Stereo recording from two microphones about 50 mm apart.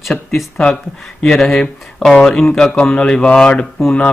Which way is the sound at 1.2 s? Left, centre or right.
Centre.